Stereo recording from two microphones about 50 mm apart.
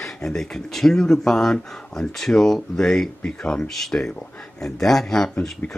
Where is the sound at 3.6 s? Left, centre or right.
Centre.